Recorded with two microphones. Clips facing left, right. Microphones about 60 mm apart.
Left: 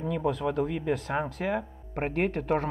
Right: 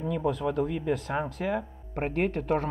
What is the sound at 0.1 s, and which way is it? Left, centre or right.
Speech, left.